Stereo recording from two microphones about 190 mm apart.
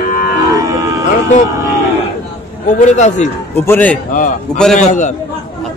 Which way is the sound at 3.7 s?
10° left (ahead or behind).